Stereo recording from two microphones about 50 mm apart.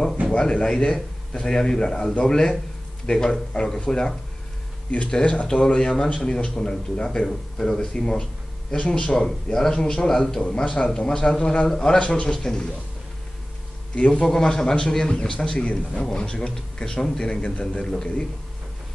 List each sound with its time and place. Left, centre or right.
0.3 s a man's voice: centre
5.1 s a man's voice: left
13.9 s a man's voice: left
14.2 s a man's voice: centre